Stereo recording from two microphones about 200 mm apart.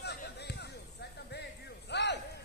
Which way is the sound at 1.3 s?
55° left (ahead or behind).